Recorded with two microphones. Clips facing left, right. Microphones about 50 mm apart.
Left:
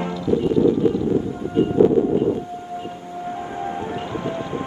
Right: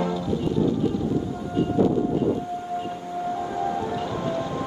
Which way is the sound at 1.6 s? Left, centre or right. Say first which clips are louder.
Left 5 dB; left.